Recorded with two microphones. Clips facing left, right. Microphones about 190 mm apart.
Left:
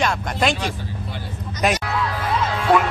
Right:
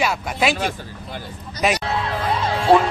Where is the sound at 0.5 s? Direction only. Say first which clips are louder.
Right 1 dB; 45° right (ahead or behind).